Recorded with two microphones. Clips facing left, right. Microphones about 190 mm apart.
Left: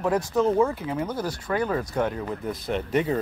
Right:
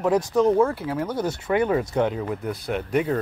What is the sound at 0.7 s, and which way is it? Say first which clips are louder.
Speech: right 2 dB; 5° right (ahead or behind).